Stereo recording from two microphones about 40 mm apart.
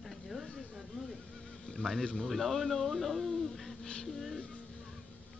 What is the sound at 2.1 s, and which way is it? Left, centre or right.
Speech, centre.